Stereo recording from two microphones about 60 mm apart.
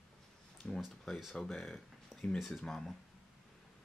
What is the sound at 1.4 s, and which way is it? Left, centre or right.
Speech, centre.